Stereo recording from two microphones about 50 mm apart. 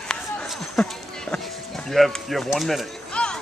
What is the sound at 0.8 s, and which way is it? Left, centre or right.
Speech, centre.